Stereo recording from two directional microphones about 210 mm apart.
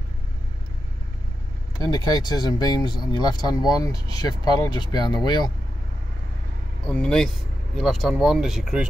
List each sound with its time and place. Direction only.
1.8 s speech: 20° left (ahead or behind)
6.9 s speech: 5° left (ahead or behind)